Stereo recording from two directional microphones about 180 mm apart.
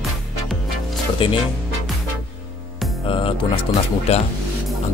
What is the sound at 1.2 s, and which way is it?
Speech, 30° left (ahead or behind).